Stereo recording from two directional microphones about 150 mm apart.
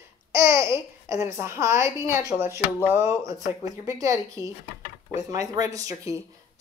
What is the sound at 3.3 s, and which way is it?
Speech, 25° right (ahead or behind).